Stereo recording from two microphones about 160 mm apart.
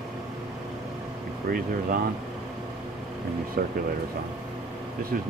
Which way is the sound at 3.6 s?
65° right (ahead or behind).